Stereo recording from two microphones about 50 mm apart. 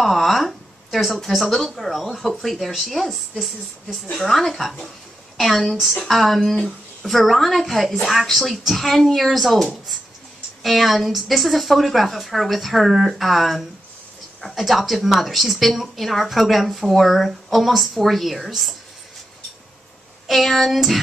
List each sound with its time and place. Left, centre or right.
0.0 s a woman's voice: centre
20.2 s a woman's voice: centre